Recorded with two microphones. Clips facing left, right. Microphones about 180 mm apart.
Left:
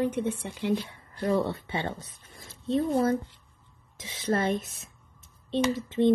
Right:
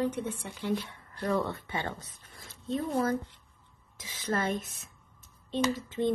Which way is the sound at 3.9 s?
30° left (ahead or behind).